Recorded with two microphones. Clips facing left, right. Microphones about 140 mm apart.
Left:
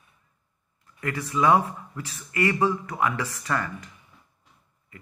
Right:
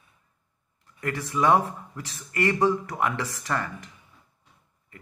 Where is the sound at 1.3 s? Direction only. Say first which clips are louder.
Left 1 dB; 10° right (ahead or behind).